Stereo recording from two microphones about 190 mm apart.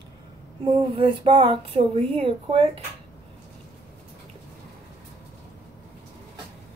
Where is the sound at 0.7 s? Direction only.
25° right (ahead or behind).